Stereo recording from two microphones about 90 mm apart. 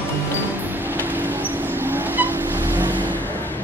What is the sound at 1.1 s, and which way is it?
Vehicle, 20° right (ahead or behind).